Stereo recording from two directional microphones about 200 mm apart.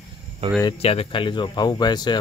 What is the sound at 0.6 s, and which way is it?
Speech, 30° left (ahead or behind).